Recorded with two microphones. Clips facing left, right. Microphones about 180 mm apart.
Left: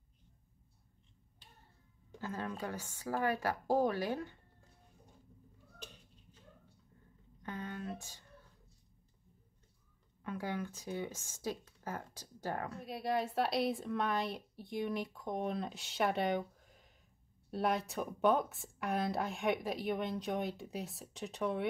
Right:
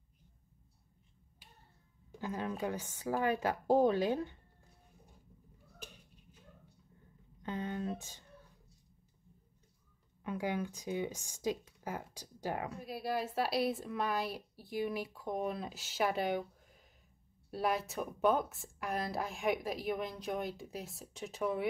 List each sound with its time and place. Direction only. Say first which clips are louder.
2.1 s a woman's voice: right 3 dB; 15° right (ahead or behind)
7.4 s a sound: right 4 dB; 20° right (ahead or behind)
10.2 s speech: right 3 dB; 15° right (ahead or behind)
12.7 s speech: left 1 dB; centre (ahead or behind)